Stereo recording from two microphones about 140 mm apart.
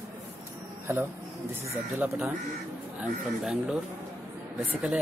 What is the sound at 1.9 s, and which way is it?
Speech, 10° right (ahead or behind).